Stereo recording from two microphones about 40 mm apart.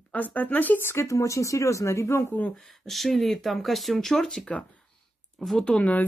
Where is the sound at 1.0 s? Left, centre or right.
Left.